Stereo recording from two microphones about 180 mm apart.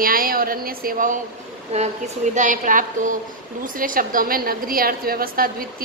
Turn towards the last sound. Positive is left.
turn(degrees=-55)  # may be behind; listen again after turning